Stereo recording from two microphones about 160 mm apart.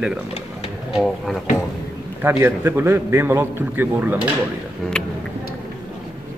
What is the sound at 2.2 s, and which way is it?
A man's voice, 15° right (ahead or behind).